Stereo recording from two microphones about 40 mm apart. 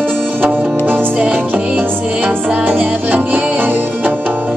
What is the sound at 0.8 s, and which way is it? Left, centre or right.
Music, right.